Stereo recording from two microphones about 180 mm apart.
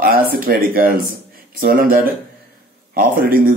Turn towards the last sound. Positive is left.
turn(degrees=-50)  # may be behind; listen again after turning